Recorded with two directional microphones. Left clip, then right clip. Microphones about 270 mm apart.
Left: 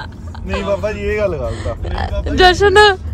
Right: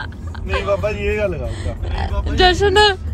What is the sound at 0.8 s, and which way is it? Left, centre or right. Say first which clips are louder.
Speech: left 2 dB; left.